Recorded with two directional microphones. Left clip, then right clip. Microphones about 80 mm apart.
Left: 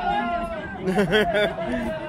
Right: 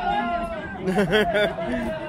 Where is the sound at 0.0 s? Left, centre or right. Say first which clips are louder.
Even; centre.